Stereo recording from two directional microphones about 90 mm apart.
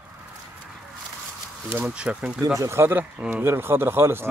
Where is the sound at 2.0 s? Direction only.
10° right (ahead or behind).